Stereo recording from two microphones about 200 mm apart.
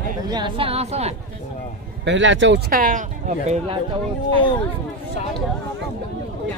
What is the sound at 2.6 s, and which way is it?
Speech, 45° right (ahead or behind).